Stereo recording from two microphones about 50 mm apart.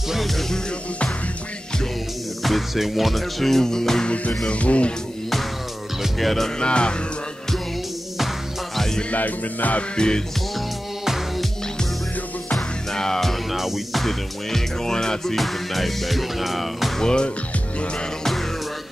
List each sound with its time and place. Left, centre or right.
0.1 s music: centre
2.4 s music: centre
4.5 s music: left
6.1 s music: centre
6.6 s music: centre
8.7 s music: centre
9.1 s music: left
9.9 s music: centre
12.5 s music: centre
17.0 s music: centre